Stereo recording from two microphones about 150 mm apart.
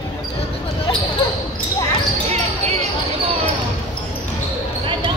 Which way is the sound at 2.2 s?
45° right (ahead or behind).